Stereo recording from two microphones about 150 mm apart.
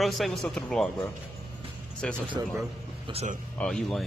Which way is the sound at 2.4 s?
20° right (ahead or behind).